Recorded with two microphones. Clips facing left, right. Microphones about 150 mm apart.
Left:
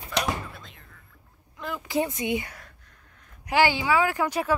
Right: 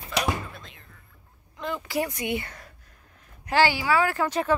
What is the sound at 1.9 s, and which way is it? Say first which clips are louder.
Speech: left 3 dB; 20° left (ahead or behind).